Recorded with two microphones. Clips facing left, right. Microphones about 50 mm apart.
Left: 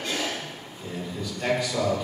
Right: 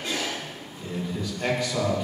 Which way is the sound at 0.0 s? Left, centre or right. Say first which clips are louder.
Left 1 dB; centre.